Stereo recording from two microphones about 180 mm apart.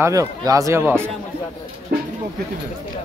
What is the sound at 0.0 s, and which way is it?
Speech, 20° right (ahead or behind).